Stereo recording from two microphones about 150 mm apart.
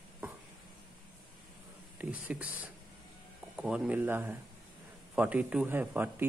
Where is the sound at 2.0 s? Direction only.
10° right (ahead or behind).